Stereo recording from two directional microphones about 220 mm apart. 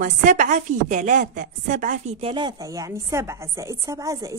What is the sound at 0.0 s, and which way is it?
A woman's voice, 35° right (ahead or behind).